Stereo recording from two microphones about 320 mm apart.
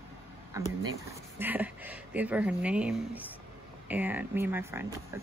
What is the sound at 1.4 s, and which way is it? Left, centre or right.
Speech, centre.